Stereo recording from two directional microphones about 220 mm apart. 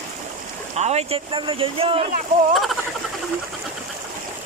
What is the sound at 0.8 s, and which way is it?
Speech, 30° right (ahead or behind).